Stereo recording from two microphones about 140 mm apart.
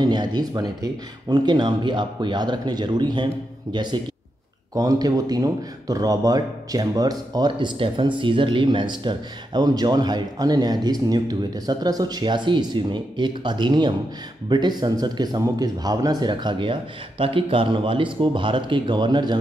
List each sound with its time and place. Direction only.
0.0 s speech: 30° right (ahead or behind)